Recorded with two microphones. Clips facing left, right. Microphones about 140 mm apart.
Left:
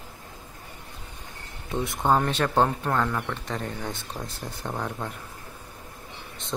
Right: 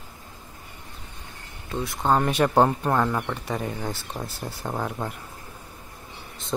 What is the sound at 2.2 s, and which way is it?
Speech, 10° right (ahead or behind).